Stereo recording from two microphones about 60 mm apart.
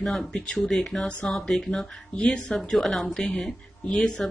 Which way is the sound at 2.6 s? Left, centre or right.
Centre.